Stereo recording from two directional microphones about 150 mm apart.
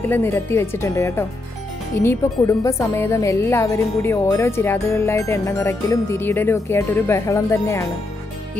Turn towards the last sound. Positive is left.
turn(degrees=20)  # may be behind; listen again after turning